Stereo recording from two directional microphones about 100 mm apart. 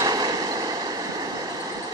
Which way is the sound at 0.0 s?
40° right (ahead or behind).